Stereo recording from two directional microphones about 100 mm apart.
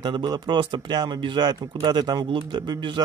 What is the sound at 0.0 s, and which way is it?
Speech, 45° right (ahead or behind).